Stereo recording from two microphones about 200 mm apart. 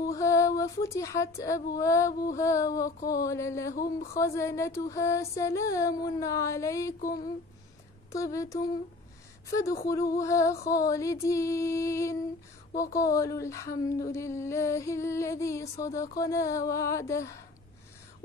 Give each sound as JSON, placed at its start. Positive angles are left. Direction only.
{"t": 0.0, "sound": "speech", "side_deg": 15}
{"t": 3.0, "sound": "mantra", "side_deg": 45}
{"t": 3.3, "sound": "speech", "side_deg": 15}
{"t": 8.1, "sound": "speech", "side_deg": 15}